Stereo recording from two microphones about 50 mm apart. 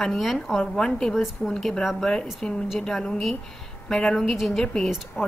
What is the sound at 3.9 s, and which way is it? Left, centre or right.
Speech, centre.